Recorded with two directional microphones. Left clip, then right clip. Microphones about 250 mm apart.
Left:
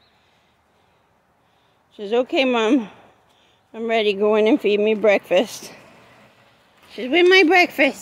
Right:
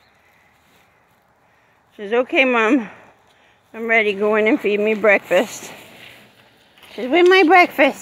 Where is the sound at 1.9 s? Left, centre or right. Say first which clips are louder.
Right 2 dB; centre.